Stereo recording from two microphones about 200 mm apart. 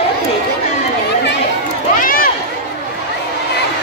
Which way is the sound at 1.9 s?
45° left (ahead or behind).